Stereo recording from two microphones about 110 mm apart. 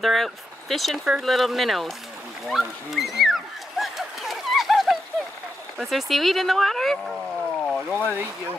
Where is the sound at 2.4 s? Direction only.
Centre (ahead or behind).